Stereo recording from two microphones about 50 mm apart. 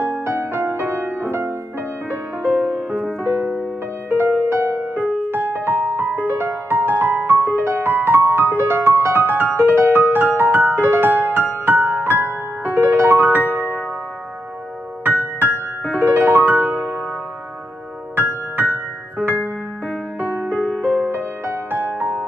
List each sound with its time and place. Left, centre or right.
0.0 s music: right
2.4 s music: right
4.1 s music: right
5.3 s music: right
7.6 s music: right
9.5 s music: right
16.0 s music: right
18.1 s music: right
20.5 s music: centre
21.1 s music: right